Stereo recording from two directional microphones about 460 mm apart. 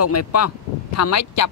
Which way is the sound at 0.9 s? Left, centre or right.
Left.